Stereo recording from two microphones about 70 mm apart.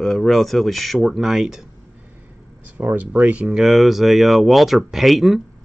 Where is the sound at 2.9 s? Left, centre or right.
Right.